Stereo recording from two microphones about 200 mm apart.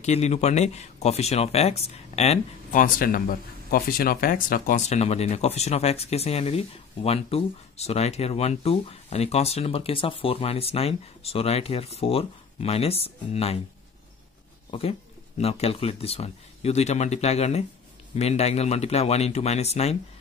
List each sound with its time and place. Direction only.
0.0 s speech: 35° left (ahead or behind)
14.7 s speech: 30° left (ahead or behind)